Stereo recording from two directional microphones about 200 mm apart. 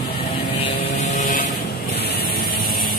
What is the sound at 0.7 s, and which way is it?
Vehicle, 35° left (ahead or behind).